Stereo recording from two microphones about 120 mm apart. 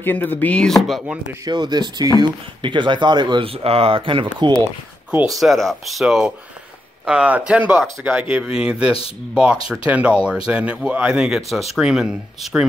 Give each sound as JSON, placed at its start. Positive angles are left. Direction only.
{"t": 0.0, "sound": "chopping", "side_deg": 15}
{"t": 0.8, "sound": "speech", "side_deg": -5}
{"t": 1.4, "sound": "speech", "side_deg": -35}
{"t": 5.4, "sound": "speech", "side_deg": 0}